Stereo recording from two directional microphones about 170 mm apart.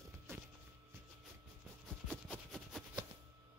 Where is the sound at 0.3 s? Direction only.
15° right (ahead or behind).